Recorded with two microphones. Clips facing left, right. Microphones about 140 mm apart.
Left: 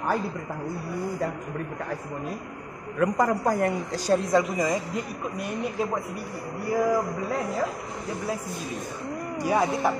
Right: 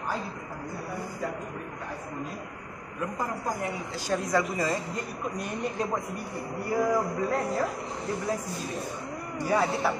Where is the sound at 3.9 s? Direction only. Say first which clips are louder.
Left 5 dB; 40° left (ahead or behind).